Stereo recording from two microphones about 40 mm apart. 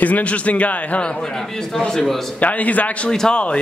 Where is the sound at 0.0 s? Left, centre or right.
Left.